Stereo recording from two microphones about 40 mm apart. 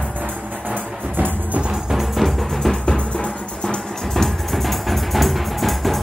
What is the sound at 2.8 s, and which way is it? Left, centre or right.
Music, left.